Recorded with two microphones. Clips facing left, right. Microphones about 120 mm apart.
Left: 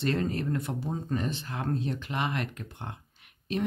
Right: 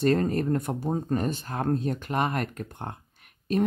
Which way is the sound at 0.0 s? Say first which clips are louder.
Right 6 dB; 45° right (ahead or behind).